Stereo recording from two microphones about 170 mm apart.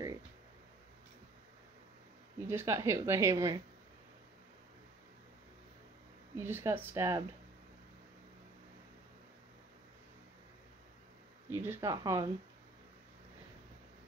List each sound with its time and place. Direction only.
2.4 s a woman's voice: 15° right (ahead or behind)
6.3 s a woman's voice: 15° right (ahead or behind)
11.5 s speech: 15° right (ahead or behind)